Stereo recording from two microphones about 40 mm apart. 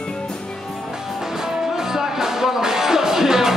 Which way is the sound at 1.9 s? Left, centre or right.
Centre.